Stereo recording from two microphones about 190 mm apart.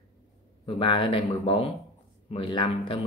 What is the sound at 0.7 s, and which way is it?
Speech, 25° left (ahead or behind).